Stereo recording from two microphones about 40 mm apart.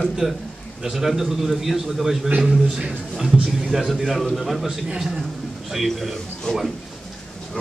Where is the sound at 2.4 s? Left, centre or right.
Right; by 6.1 s centre.